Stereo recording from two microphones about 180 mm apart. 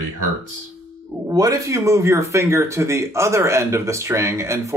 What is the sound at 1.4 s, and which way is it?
Speech, 20° right (ahead or behind).